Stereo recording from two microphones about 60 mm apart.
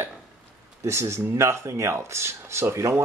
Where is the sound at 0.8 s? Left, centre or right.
Right.